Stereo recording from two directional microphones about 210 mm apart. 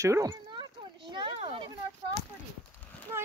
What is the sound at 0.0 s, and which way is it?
Speech, 15° right (ahead or behind).